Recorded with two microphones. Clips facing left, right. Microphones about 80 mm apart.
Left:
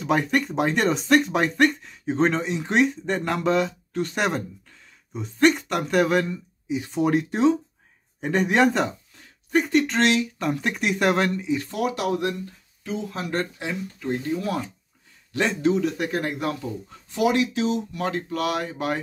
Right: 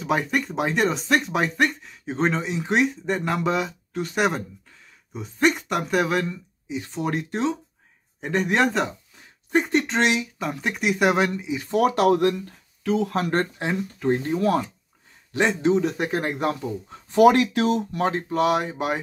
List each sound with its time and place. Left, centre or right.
0.0 s speech: centre
9.1 s speech: right
10.4 s speech: centre
11.7 s speech: right
12.8 s speech: right
13.3 s speech: right
15.3 s speech: right
17.1 s speech: right
17.9 s speech: right